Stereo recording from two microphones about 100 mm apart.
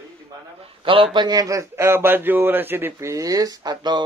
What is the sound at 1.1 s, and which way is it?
A man's voice, 45° right (ahead or behind).